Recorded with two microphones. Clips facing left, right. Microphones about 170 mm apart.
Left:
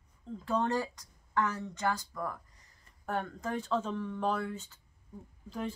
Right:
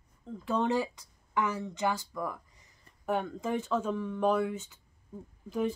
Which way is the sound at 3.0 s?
15° right (ahead or behind).